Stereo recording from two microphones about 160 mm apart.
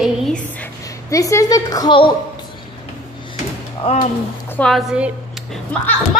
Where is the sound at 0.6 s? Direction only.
20° left (ahead or behind).